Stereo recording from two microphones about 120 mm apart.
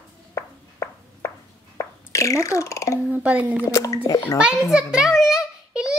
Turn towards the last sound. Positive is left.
turn(degrees=-5)  # may be behind; listen again after turning